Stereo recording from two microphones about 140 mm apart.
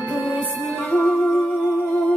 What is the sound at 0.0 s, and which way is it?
Music, centre (ahead or behind).